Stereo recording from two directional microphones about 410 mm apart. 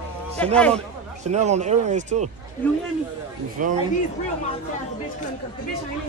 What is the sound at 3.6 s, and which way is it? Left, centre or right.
Speech, centre.